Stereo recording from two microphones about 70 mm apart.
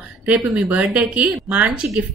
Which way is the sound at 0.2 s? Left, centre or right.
Right.